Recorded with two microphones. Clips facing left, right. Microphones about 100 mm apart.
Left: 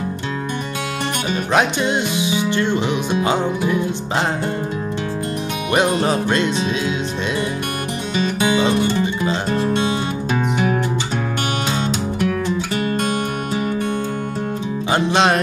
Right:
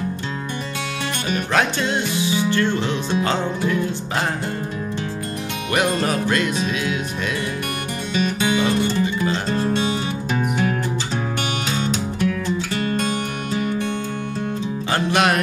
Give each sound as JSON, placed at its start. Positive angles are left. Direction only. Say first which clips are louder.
{"t": 1.3, "sound": "music", "louder": "left 2 dB", "side_deg": 20}
{"t": 5.7, "sound": "music", "louder": "left 3 dB", "side_deg": 25}
{"t": 9.0, "sound": "music", "louder": "left 1 dB", "side_deg": 20}
{"t": 14.9, "sound": "music", "louder": "left 3 dB", "side_deg": 20}